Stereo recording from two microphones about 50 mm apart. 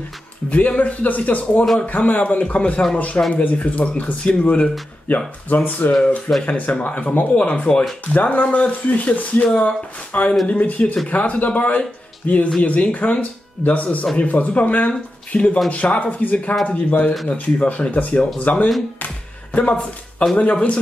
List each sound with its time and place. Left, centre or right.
0.5 s speech: left
5.1 s speech: left
6.9 s speech: left
8.1 s speech: left
18.9 s music: left